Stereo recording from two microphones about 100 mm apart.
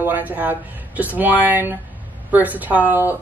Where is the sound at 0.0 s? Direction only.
20° right (ahead or behind).